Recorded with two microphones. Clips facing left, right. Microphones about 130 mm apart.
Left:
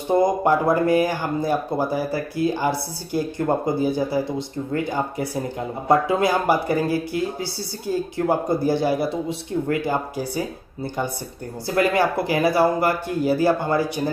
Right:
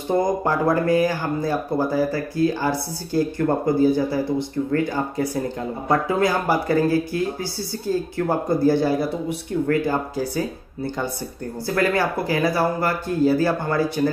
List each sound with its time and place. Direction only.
0.2 s speech: 20° left (ahead or behind)
11.7 s speech: 20° left (ahead or behind)